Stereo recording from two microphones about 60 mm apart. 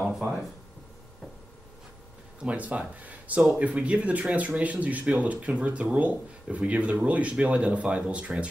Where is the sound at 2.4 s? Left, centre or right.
Right.